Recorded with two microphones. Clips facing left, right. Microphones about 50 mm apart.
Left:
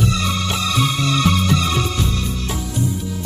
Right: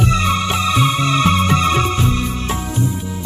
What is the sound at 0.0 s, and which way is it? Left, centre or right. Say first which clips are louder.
Music: right 4 dB; right.